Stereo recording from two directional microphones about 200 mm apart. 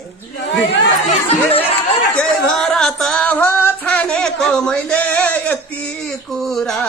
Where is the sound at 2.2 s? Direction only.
5° left (ahead or behind).